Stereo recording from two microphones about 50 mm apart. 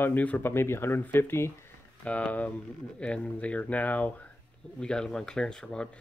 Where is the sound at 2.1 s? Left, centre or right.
Left.